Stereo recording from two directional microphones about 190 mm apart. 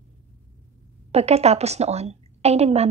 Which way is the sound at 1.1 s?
35° right (ahead or behind).